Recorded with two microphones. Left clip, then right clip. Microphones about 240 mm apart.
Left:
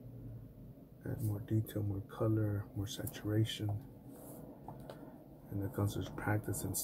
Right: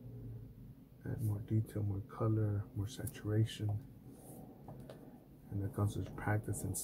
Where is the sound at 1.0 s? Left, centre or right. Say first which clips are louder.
Left 2 dB; centre.